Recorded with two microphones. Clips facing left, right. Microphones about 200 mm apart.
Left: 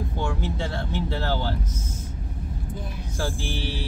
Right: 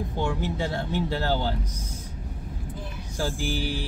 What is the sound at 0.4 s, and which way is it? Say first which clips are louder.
Speech: right 1 dB; 15° right (ahead or behind).